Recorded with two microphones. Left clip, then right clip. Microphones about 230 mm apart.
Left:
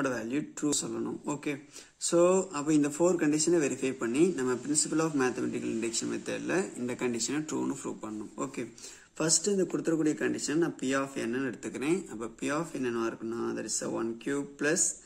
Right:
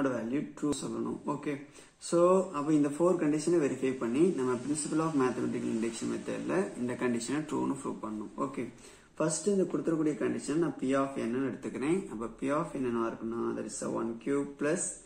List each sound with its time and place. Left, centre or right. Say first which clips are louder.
0.0 s speech: even; left